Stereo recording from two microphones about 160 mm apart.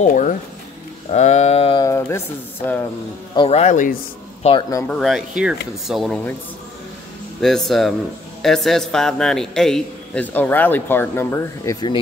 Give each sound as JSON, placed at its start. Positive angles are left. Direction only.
{"t": 0.0, "sound": "speech", "side_deg": 50}
{"t": 1.1, "sound": "a sound", "side_deg": 45}
{"t": 1.9, "sound": "a man's voice", "side_deg": 15}
{"t": 3.3, "sound": "speech", "side_deg": 40}
{"t": 4.4, "sound": "speech", "side_deg": 35}
{"t": 4.8, "sound": "speech", "side_deg": 0}
{"t": 7.4, "sound": "a man's voice", "side_deg": 0}